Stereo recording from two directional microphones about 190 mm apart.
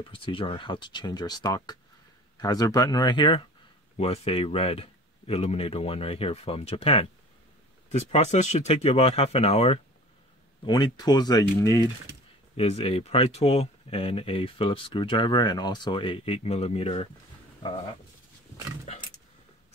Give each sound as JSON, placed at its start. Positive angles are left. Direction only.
{"t": 0.1, "sound": "speech", "side_deg": 25}
{"t": 12.5, "sound": "speech", "side_deg": 30}
{"t": 18.9, "sound": "a sound", "side_deg": 35}